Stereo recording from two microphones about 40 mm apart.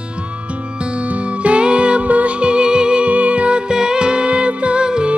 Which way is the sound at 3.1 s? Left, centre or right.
Right.